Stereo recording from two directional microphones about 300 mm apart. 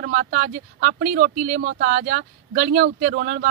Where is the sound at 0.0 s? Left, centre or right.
Right.